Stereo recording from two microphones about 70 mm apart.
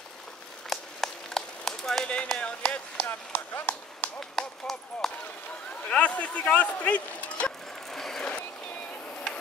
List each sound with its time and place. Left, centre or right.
0.7 s run: centre; by 4.1 s left
4.2 s speech: centre
5.9 s speech: centre
7.9 s a sound: centre